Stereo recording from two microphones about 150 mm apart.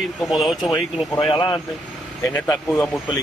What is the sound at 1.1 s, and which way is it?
Speech, 30° left (ahead or behind).